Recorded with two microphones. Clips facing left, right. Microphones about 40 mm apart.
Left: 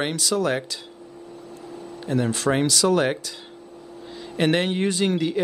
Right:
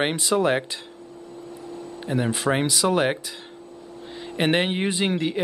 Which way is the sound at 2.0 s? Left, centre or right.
Centre.